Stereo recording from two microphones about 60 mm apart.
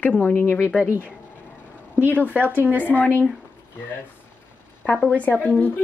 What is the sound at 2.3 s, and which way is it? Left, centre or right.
Speech, right.